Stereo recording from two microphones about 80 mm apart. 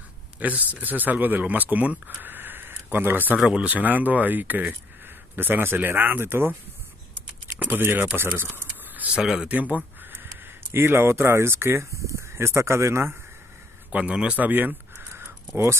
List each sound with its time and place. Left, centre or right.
0.4 s speech: centre
3.3 s speech: centre; by 6.5 s right
7.5 s speech: right
8.5 s a sound: centre
9.2 s speech: centre
9.5 s speech: centre
13.9 s speech: centre; by 15.7 s right